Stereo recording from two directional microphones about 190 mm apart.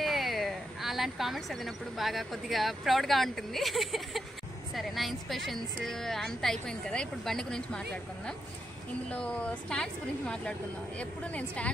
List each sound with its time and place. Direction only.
0.0 s a woman's voice: centre (ahead or behind)